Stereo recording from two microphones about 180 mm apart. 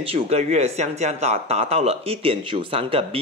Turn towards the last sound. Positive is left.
turn(degrees=-30)  # may be behind; listen again after turning